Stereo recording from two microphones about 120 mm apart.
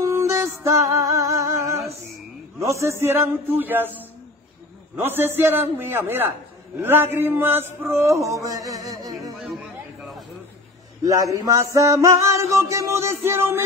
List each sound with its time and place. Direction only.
0.0 s music: 25° right (ahead or behind)
5.0 s a man's voice: 20° right (ahead or behind)
6.8 s music: 20° right (ahead or behind)
9.6 s a sound: centre (ahead or behind)
11.1 s music: 30° right (ahead or behind)